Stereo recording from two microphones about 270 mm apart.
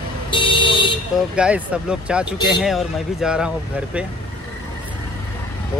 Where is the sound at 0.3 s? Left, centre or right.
Centre.